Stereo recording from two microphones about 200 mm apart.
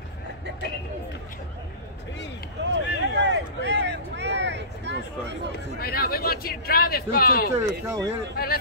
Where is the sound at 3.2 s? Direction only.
60° right (ahead or behind).